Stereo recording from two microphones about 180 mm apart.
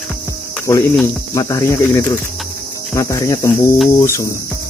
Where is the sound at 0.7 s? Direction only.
15° left (ahead or behind).